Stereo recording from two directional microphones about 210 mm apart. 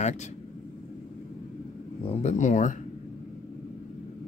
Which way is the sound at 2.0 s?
35° left (ahead or behind).